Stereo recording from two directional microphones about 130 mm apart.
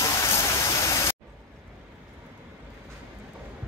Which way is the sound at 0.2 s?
20° left (ahead or behind).